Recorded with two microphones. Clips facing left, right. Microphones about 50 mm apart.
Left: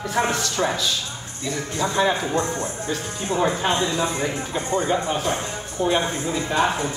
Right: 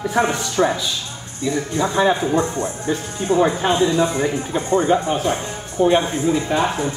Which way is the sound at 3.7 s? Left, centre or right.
Centre.